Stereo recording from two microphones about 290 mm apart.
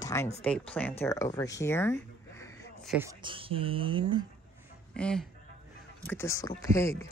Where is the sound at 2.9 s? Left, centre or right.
Centre.